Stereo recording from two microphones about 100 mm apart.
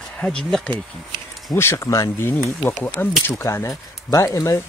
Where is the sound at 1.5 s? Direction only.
25° left (ahead or behind).